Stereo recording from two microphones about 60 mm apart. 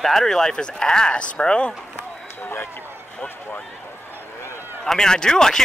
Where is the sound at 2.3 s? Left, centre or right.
Left.